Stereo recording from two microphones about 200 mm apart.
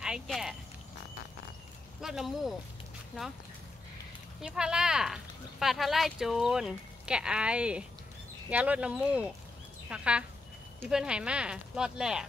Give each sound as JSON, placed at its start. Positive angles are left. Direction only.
{"t": 0.0, "sound": "speech", "side_deg": -5}
{"t": 2.0, "sound": "speech", "side_deg": 0}
{"t": 4.4, "sound": "speech", "side_deg": -5}